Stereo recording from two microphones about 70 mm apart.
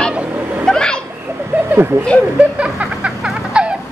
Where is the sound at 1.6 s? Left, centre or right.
Right.